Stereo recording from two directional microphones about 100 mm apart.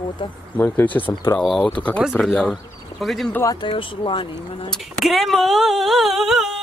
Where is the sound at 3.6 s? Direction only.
60° left (ahead or behind).